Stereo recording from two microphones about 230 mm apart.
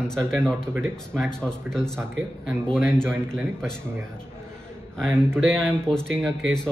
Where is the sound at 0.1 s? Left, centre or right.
Centre.